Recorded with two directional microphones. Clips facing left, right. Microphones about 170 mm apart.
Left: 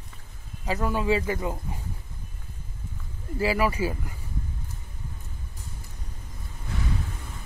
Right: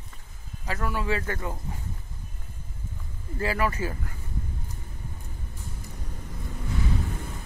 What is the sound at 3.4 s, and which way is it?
Speech, 10° left (ahead or behind).